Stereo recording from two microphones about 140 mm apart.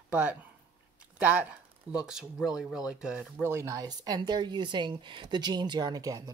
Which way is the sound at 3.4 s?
20° right (ahead or behind).